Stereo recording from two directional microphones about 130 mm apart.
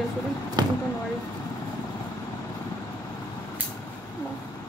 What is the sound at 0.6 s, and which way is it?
Speech, 30° right (ahead or behind).